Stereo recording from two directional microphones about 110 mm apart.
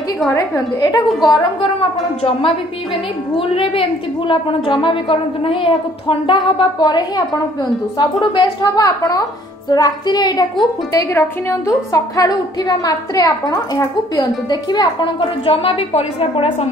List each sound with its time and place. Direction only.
0.3 s a woman's voice: 40° left (ahead or behind)
1.6 s a woman's voice: 55° left (ahead or behind)
6.8 s a woman's voice: 40° left (ahead or behind)
15.4 s a woman's voice: 55° left (ahead or behind)